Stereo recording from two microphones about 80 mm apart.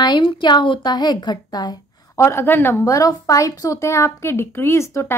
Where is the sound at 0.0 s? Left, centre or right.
Left.